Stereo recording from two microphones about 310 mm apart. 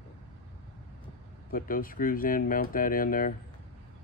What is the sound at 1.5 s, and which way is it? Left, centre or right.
Speech, left.